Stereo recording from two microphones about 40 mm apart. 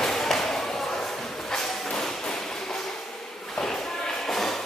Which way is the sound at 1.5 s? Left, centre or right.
Centre.